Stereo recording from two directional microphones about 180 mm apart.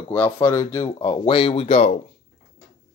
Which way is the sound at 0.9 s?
30° left (ahead or behind).